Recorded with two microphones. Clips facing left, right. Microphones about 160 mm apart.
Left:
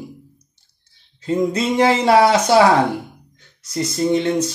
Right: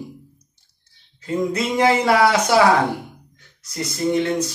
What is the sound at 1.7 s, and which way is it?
Speech, 25° left (ahead or behind).